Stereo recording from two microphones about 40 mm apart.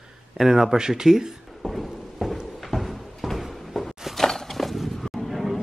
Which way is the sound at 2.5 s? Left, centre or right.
Centre.